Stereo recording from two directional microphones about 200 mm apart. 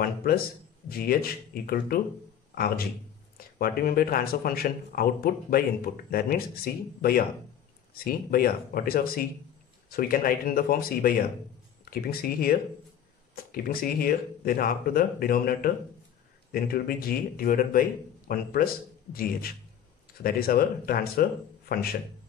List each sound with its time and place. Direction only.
0.0 s speech: 50° left (ahead or behind)